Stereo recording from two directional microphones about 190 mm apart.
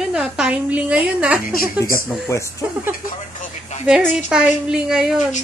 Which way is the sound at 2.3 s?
15° left (ahead or behind).